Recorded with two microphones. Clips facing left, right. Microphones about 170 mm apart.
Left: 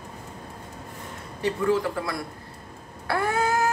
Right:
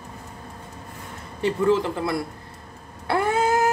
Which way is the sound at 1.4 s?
25° right (ahead or behind).